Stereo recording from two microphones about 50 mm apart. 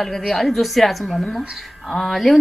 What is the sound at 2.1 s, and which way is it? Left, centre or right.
Speech, centre.